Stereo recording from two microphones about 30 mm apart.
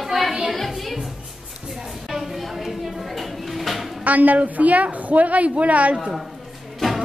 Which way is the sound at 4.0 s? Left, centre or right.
Right.